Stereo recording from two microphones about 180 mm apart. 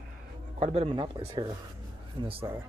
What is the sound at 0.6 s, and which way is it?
Speech, 35° right (ahead or behind).